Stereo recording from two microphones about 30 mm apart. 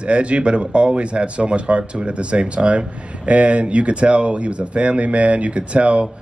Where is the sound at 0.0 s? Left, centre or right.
Right.